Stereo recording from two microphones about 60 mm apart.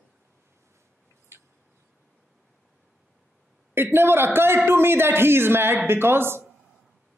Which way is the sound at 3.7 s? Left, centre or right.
Right.